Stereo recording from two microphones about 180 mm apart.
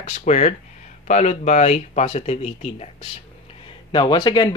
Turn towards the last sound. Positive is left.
turn(degrees=25)  # may be behind; listen again after turning